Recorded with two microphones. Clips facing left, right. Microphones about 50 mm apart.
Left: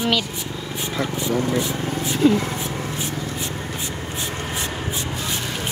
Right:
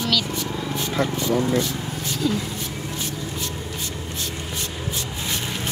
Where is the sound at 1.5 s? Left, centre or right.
Centre.